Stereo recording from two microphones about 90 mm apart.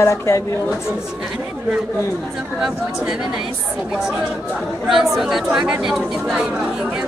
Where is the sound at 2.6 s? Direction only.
5° right (ahead or behind).